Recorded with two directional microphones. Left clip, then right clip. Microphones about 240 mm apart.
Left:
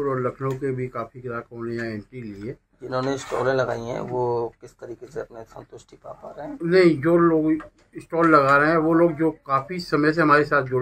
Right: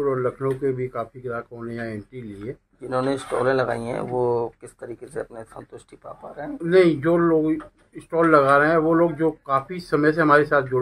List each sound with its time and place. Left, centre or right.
0.0 s speech: centre
2.9 s speech: right
6.6 s speech: centre